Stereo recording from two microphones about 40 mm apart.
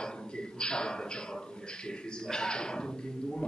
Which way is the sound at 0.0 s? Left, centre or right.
Centre.